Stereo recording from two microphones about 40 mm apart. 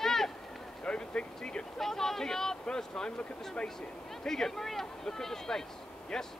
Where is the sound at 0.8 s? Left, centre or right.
Left.